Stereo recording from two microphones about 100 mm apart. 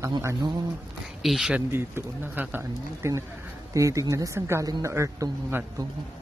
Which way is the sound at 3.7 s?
30° right (ahead or behind).